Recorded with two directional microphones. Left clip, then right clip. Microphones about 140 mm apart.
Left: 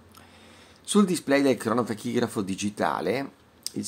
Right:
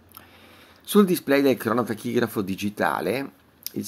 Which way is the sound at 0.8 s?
20° right (ahead or behind).